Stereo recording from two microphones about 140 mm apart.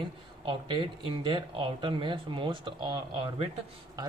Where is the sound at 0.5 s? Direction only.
35° right (ahead or behind).